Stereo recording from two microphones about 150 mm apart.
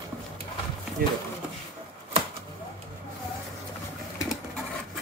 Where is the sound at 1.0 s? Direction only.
75° right (ahead or behind).